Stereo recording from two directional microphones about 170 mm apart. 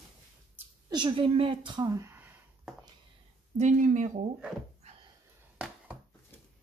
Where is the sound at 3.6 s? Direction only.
45° right (ahead or behind).